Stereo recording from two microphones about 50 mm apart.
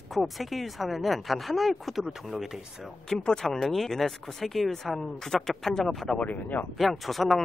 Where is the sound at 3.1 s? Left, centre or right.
Centre.